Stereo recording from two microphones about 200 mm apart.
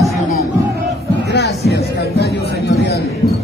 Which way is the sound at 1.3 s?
55° left (ahead or behind).